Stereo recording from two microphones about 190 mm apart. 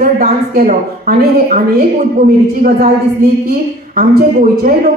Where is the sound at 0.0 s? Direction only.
50° right (ahead or behind).